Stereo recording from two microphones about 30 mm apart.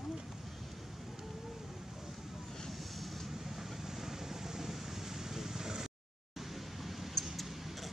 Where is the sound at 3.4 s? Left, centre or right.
Centre.